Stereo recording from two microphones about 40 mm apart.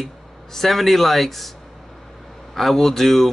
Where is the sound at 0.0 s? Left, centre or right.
Centre.